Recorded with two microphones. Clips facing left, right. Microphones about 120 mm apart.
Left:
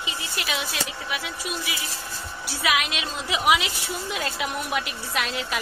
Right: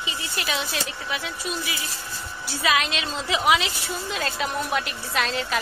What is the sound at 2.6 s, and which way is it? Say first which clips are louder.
Speech: right 2 dB; 10° left (ahead or behind).